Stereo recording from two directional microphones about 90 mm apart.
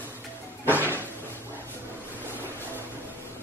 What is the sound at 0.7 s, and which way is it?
Cupboard open or close, 20° right (ahead or behind).